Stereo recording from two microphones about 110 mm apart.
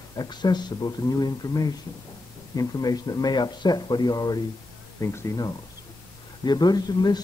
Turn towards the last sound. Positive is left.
turn(degrees=40)  # may be behind; listen again after turning